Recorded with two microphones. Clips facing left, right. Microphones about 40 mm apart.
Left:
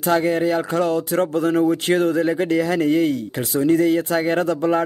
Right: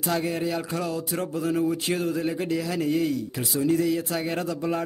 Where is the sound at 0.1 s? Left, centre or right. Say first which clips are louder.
Left 9 dB; left.